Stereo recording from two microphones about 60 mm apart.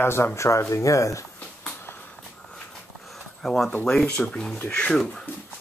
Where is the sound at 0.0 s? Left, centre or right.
Left.